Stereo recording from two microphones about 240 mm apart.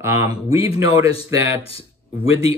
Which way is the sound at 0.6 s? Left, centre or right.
Left.